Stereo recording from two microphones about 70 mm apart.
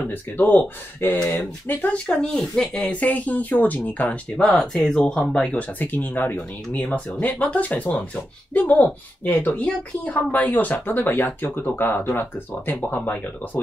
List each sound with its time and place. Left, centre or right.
0.0 s a woman's voice: left
2.0 s a woman's voice: centre